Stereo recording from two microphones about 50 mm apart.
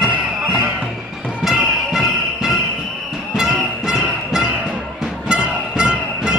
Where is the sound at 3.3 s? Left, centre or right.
Centre.